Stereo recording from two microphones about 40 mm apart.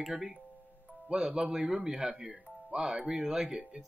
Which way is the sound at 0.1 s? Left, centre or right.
Centre.